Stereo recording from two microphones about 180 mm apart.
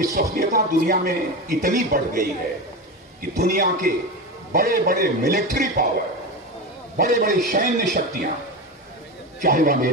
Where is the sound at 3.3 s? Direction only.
60° right (ahead or behind).